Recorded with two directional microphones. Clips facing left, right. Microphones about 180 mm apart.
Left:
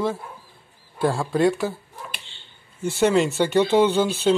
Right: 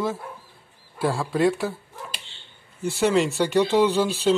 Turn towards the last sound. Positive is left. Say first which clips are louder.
# left 1 dB
turn(degrees=0)  # may be behind; listen again after turning